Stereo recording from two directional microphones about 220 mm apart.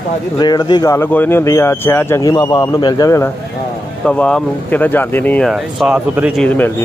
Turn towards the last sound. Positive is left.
turn(degrees=5)  # may be behind; listen again after turning